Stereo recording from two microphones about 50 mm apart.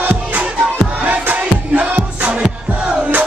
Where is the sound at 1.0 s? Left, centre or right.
Right.